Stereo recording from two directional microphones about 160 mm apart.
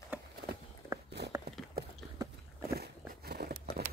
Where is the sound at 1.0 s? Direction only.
90° right.